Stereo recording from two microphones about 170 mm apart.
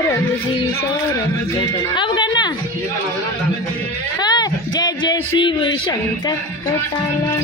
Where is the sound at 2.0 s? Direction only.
25° left (ahead or behind).